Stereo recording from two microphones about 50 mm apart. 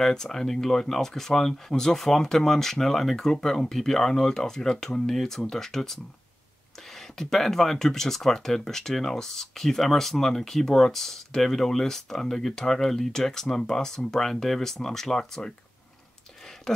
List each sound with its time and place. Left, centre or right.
0.0 s speech: centre
7.0 s speech: centre
16.7 s speech: centre